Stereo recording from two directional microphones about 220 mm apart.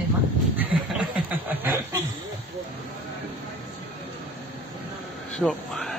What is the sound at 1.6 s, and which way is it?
Snicker, 10° right (ahead or behind).